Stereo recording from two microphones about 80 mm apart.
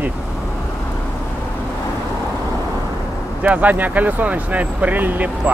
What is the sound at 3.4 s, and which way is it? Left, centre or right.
Speech, centre.